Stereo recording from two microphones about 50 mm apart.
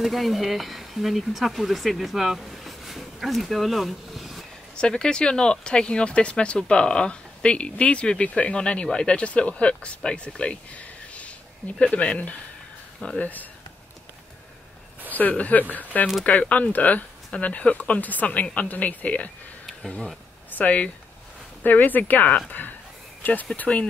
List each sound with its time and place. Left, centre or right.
0.0 s speech: centre
4.7 s speech: centre; by 13.5 s left
15.0 s speech: left
20.5 s speech: left